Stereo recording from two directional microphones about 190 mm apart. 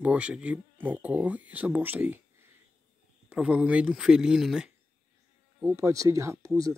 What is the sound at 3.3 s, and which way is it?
Speech, 5° right (ahead or behind).